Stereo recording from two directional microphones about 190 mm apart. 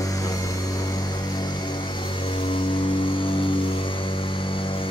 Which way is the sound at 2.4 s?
25° left (ahead or behind).